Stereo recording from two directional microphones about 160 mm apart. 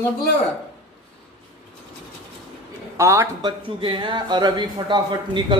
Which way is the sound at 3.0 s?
20° right (ahead or behind).